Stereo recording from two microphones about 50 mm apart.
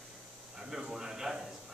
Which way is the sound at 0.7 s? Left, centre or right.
Centre.